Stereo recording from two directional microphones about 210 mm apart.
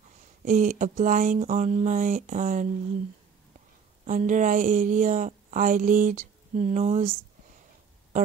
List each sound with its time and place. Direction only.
0.5 s a woman's voice: 35° right (ahead or behind)
4.0 s a woman's voice: 35° right (ahead or behind)